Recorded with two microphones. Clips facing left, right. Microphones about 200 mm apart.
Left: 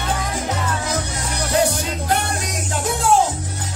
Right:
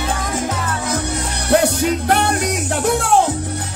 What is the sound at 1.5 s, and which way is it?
Music, 60° right (ahead or behind).